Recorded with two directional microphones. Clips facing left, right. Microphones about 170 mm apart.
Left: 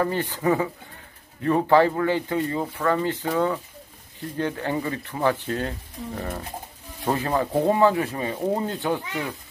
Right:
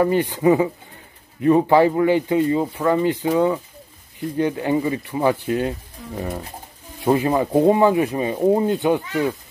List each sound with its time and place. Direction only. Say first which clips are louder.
0.0 s speech: right 7 dB; 15° right (ahead or behind)